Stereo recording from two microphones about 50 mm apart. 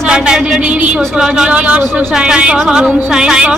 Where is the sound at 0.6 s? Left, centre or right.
Right.